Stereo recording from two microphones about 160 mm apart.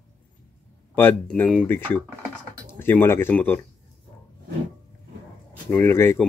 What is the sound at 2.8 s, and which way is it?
Speech, 15° left (ahead or behind).